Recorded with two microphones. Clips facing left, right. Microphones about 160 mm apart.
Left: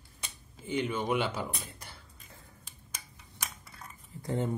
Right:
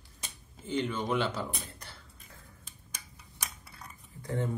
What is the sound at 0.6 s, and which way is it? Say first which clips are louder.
Speech: even; 10° left (ahead or behind).